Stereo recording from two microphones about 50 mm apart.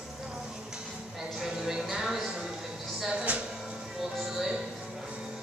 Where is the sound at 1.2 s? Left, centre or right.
Centre.